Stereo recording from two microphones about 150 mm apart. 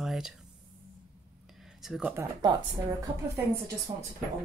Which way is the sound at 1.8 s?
5° right (ahead or behind).